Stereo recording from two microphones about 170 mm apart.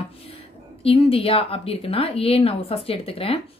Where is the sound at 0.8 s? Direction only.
35° left (ahead or behind).